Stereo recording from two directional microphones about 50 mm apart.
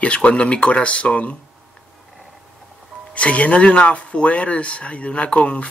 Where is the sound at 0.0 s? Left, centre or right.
Left.